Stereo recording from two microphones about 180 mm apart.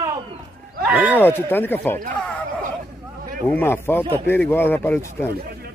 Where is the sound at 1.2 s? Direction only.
10° left (ahead or behind).